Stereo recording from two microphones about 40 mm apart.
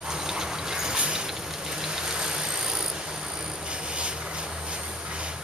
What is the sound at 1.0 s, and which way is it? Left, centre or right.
Vehicle, right.